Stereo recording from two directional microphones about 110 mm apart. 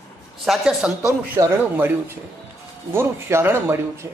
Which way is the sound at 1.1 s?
20° right (ahead or behind).